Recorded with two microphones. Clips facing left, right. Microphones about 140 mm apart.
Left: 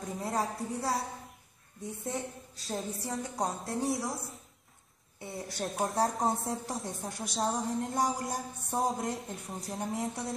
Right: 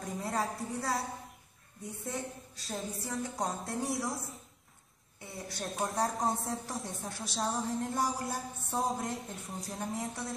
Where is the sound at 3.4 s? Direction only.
Centre (ahead or behind).